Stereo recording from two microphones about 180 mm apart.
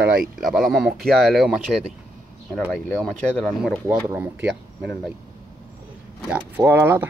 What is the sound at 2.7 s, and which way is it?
A man's voice, 5° left (ahead or behind).